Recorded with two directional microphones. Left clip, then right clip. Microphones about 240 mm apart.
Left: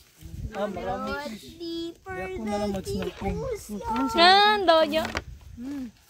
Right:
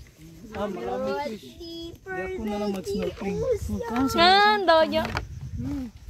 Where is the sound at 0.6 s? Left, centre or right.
Left.